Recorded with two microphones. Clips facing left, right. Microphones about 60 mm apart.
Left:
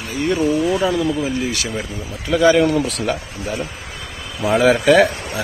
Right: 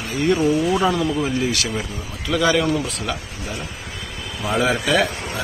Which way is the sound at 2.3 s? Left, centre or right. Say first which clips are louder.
Left 5 dB; left.